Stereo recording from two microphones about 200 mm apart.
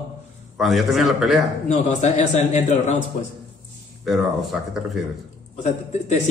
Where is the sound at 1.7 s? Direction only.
35° left (ahead or behind).